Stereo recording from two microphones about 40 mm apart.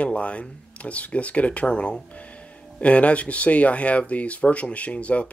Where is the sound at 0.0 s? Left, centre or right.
Left.